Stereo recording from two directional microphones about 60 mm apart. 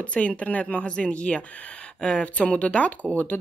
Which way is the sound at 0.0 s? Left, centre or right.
Left.